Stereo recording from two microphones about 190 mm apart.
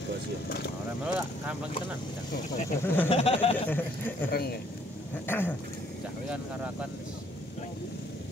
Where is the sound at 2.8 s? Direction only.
10° left (ahead or behind).